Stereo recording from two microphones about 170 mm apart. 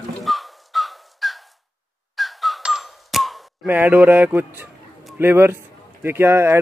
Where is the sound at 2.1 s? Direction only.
Centre (ahead or behind).